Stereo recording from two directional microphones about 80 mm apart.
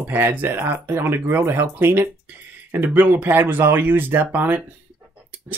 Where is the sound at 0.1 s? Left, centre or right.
Right.